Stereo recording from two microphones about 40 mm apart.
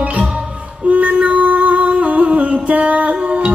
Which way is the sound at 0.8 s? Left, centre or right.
Right.